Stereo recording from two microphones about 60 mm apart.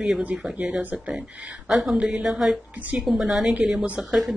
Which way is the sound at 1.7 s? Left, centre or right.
Centre.